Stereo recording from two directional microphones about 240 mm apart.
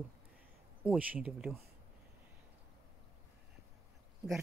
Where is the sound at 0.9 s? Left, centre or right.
Centre.